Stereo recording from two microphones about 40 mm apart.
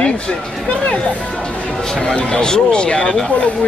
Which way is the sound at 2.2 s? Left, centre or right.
Centre.